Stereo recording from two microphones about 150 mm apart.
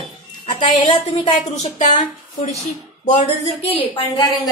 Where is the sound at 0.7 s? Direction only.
50° left (ahead or behind).